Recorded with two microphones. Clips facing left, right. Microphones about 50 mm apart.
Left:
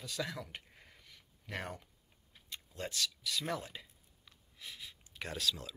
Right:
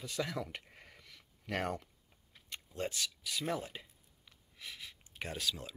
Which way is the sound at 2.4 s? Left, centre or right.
Right.